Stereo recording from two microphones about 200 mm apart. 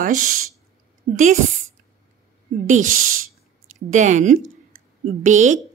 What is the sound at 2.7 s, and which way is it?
Speech, 40° right (ahead or behind).